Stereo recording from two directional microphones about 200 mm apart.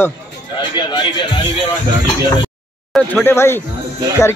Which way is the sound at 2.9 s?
5° left (ahead or behind).